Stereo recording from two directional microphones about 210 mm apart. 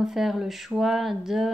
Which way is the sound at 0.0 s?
Centre (ahead or behind).